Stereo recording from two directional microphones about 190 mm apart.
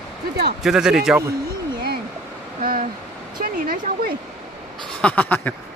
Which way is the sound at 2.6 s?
45° right (ahead or behind).